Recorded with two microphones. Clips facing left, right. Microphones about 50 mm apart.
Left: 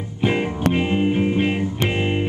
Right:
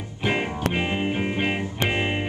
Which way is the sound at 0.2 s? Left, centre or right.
Centre.